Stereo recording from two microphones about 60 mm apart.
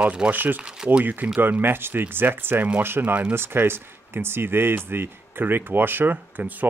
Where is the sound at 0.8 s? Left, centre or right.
Centre.